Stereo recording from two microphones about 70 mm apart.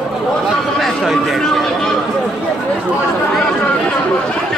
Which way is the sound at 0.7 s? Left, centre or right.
Centre.